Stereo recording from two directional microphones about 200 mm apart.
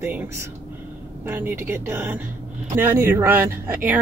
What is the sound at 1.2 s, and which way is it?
Speech, 10° right (ahead or behind).